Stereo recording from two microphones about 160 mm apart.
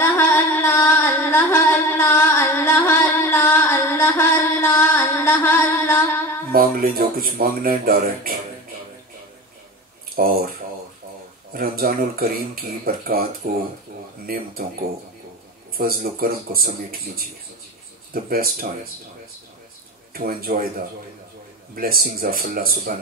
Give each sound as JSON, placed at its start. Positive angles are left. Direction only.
{"t": 0.0, "sound": "music", "side_deg": 15}
{"t": 6.5, "sound": "speech", "side_deg": -65}
{"t": 10.1, "sound": "speech", "side_deg": -65}
{"t": 11.5, "sound": "speech", "side_deg": -65}
{"t": 15.8, "sound": "speech", "side_deg": -65}
{"t": 20.2, "sound": "speech", "side_deg": -65}